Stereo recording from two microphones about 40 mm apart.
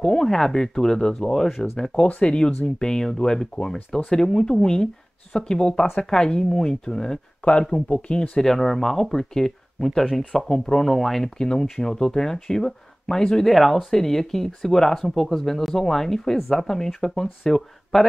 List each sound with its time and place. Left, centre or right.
0.0 s speech: centre
7.6 s speech: left
8.4 s speech: centre
11.3 s speech: centre
13.5 s speech: centre